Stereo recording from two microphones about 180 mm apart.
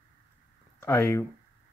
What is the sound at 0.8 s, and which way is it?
Speech, 15° left (ahead or behind).